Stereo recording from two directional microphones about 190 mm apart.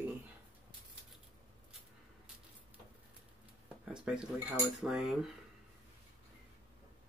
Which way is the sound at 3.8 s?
5° right (ahead or behind).